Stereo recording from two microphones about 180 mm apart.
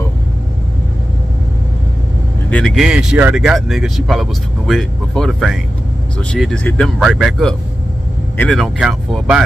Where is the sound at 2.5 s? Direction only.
5° left (ahead or behind).